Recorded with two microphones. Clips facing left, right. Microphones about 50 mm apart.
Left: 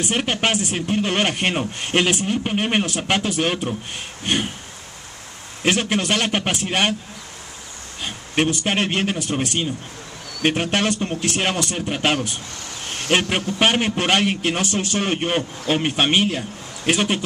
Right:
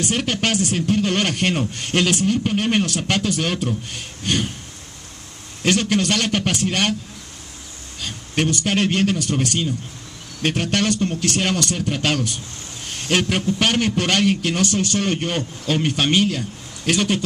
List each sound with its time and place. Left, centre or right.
0.0 s speech: centre
5.6 s a man's voice: centre
8.0 s speech: centre